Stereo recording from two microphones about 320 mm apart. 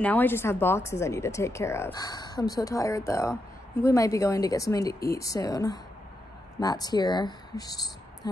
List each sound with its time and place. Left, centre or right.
0.0 s speech: centre